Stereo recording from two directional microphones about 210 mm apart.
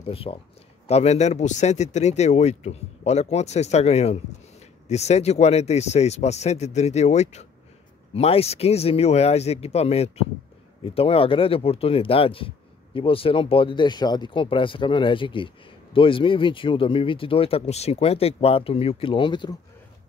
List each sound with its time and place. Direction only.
0.0 s speech: 25° left (ahead or behind)